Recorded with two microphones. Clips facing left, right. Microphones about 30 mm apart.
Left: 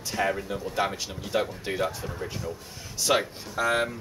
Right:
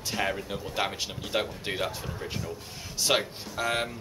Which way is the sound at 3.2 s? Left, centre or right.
Centre.